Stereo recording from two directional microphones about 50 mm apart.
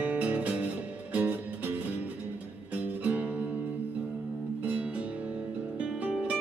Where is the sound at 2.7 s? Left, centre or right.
Right.